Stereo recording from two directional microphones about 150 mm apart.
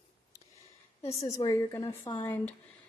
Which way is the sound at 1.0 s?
40° left (ahead or behind).